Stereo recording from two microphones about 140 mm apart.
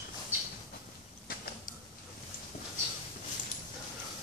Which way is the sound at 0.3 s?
15° right (ahead or behind).